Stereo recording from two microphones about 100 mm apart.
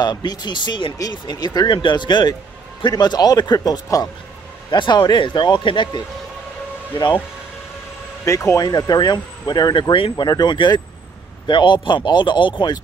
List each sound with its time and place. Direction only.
0.0 s speech: 45° left (ahead or behind)
8.3 s speech: 30° left (ahead or behind)
8.6 s speech: 40° left (ahead or behind)